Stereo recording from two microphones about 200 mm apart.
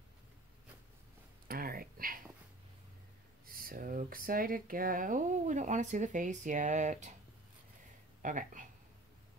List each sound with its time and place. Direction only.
1.5 s a sound: 45° right (ahead or behind)
3.4 s speech: 45° right (ahead or behind)
8.2 s speech: 40° right (ahead or behind)